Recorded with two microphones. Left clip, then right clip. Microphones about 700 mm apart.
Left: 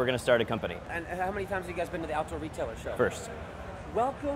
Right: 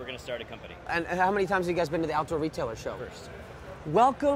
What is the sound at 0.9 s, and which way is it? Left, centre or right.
Speech, right.